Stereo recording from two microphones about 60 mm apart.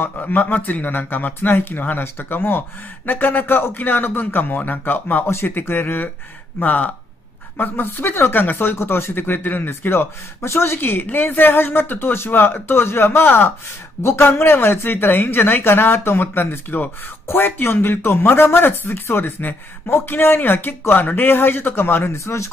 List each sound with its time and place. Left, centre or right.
0.2 s speech: left
22.2 s speech: left